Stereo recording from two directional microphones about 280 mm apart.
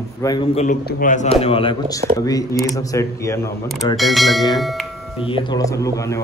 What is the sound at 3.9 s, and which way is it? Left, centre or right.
Speech, centre.